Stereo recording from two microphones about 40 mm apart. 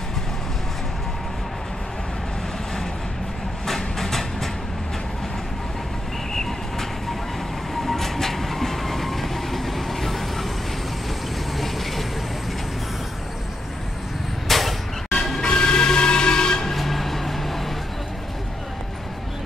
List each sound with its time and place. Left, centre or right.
3.6 s train: centre
6.3 s train: centre
11.5 s a sound: centre
14.5 s a sound: centre
15.3 s music: centre
16.7 s train: centre